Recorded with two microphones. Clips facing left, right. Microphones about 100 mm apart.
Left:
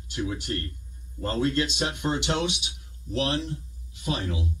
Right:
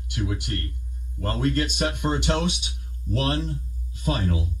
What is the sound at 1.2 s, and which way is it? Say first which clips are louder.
Speech: right 1 dB; 55° right (ahead or behind).